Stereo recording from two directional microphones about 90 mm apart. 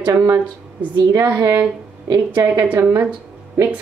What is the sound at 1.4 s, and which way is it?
A woman's voice, 30° right (ahead or behind).